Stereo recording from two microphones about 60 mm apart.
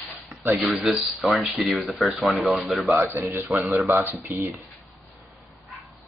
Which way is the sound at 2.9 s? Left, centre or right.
Right.